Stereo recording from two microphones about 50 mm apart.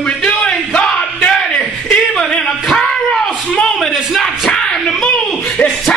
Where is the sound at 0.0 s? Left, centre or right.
Left.